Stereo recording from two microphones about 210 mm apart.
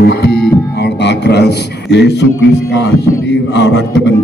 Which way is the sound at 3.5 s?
55° left (ahead or behind).